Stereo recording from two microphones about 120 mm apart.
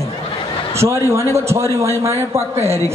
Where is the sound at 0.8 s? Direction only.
25° right (ahead or behind).